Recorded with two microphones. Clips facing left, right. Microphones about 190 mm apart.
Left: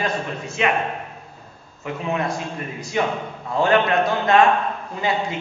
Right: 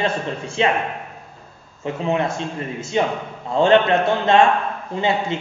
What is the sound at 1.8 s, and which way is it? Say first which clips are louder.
A man's voice: right 3 dB; 25° right (ahead or behind).